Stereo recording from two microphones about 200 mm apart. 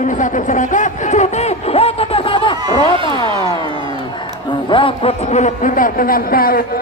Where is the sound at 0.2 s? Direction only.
40° left (ahead or behind).